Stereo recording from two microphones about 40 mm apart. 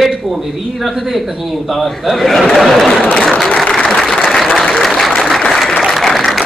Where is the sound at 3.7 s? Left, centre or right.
Centre.